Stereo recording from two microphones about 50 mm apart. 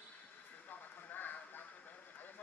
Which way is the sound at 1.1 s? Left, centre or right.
Left.